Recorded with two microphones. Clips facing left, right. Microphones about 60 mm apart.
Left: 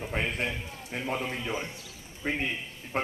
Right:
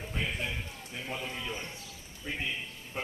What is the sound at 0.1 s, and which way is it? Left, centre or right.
A man's voice, left.